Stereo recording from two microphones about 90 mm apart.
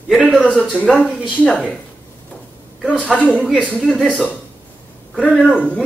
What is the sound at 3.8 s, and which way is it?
Speech, 10° right (ahead or behind).